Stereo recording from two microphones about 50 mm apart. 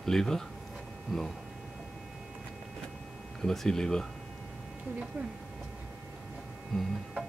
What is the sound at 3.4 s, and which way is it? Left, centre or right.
Speech, centre.